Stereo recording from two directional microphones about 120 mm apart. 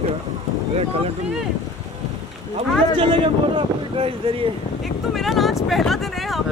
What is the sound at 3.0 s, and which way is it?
Speech, 45° right (ahead or behind).